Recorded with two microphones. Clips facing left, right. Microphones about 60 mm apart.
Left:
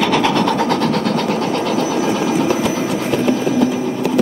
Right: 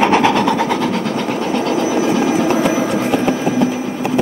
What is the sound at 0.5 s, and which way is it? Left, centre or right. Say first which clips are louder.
Train: even; centre.